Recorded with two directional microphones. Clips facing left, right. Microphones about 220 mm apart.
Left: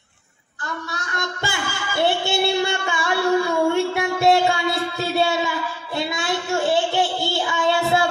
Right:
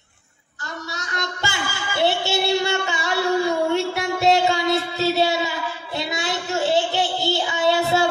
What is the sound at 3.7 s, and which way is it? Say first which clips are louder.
Music: left 1 dB; 55° left (ahead or behind).